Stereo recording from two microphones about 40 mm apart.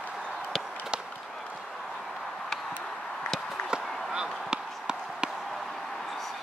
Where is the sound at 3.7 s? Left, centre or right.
Right.